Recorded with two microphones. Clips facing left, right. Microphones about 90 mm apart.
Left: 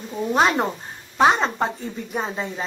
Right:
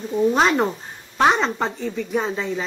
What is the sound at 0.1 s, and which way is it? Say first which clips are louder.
A woman's voice: right 2 dB; centre (ahead or behind).